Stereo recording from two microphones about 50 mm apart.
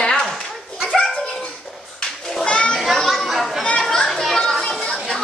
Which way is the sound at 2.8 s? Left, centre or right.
Centre.